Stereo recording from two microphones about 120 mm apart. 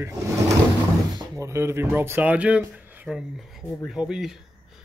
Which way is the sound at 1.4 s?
20° right (ahead or behind).